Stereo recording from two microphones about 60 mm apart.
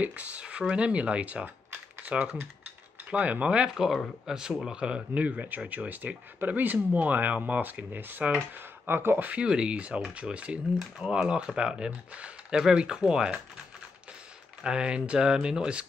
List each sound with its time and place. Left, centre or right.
0.0 s speech: right
2.0 s mechanisms: right
4.3 s speech: centre; by 9.3 s right
9.3 s speech: centre
14.6 s speech: centre